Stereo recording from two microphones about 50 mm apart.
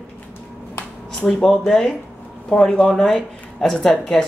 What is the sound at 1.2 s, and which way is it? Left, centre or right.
Speech, centre.